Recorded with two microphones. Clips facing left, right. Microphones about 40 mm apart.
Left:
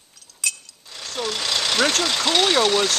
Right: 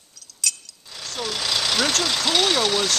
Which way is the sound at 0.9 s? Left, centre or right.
Centre.